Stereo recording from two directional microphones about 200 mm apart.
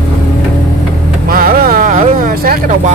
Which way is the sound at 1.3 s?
45° right (ahead or behind).